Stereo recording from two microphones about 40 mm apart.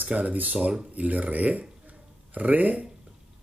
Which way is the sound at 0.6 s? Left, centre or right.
Right.